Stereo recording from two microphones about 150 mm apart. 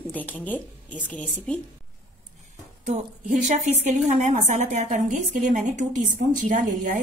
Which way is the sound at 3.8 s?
55° right (ahead or behind).